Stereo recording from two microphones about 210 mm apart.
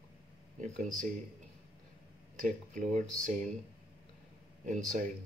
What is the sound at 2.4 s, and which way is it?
Speech, 35° right (ahead or behind).